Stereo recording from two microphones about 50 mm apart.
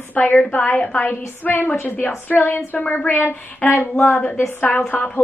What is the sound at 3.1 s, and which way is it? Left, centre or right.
A woman's voice, left.